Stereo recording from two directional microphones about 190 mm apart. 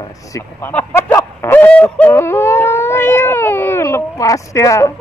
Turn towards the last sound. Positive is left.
turn(degrees=15)  # may be behind; listen again after turning